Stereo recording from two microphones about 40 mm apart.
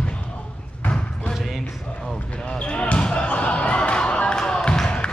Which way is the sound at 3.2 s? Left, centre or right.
Left.